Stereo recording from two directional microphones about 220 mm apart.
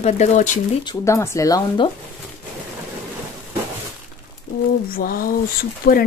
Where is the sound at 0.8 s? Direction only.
15° left (ahead or behind).